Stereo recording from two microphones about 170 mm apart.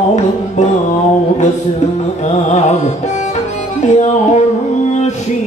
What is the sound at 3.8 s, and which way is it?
Music, 45° left (ahead or behind).